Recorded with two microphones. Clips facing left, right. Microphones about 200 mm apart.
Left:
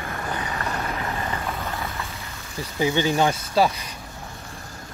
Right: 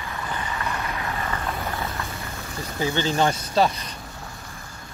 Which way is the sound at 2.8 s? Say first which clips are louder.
Left 2 dB; 15° left (ahead or behind).